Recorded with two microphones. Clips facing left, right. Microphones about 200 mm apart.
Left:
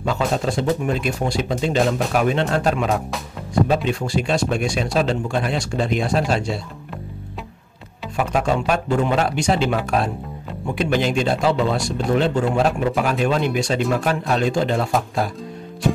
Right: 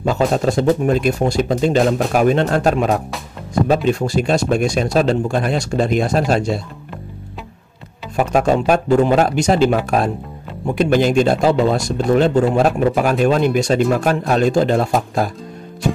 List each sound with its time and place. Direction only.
0.0 s speech: 45° right (ahead or behind)
8.2 s speech: 45° right (ahead or behind)